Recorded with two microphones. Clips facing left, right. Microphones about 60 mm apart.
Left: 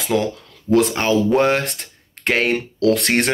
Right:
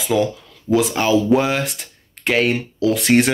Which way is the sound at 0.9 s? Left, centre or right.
Left.